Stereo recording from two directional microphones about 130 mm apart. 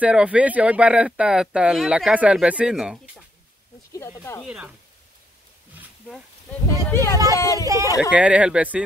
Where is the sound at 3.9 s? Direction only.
20° left (ahead or behind).